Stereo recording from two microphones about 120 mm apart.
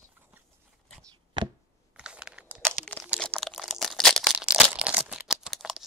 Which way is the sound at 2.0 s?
5° right (ahead or behind).